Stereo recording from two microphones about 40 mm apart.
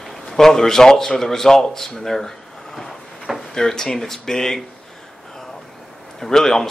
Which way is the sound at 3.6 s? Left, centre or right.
Centre.